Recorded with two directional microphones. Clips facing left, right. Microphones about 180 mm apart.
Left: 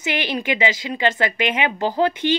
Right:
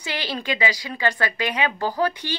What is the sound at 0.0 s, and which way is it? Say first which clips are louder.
A woman's voice: left 5 dB; 20° left (ahead or behind).